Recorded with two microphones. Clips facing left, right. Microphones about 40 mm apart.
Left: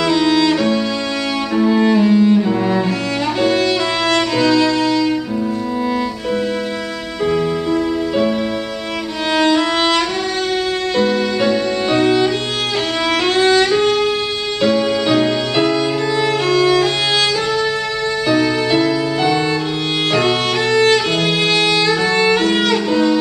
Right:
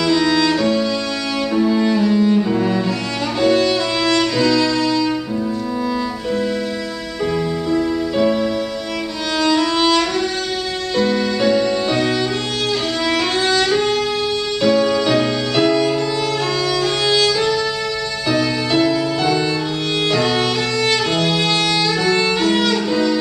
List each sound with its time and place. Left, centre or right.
0.0 s music: centre
2.3 s cello: centre
3.3 s music: centre
7.7 s music: centre
9.4 s music: left
11.0 s music: centre
16.7 s music: left
18.3 s music: centre
20.1 s violin: left
22.0 s music: centre